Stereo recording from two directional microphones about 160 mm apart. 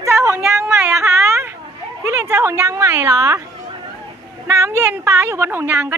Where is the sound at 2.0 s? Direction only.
15° right (ahead or behind).